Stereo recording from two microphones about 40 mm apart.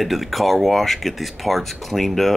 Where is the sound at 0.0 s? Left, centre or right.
Centre.